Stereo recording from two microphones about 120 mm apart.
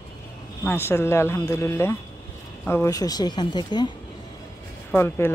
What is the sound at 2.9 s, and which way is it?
Speech, 35° left (ahead or behind).